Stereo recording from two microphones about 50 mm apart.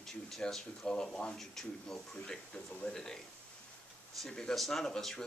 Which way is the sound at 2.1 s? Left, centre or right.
Centre.